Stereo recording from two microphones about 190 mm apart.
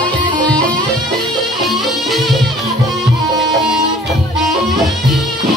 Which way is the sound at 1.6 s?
Centre (ahead or behind).